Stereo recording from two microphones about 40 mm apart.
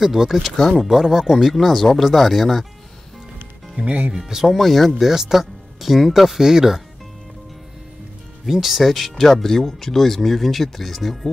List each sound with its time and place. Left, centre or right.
0.0 s speech: centre
3.7 s speech: right
4.6 s speech: centre
8.5 s speech: centre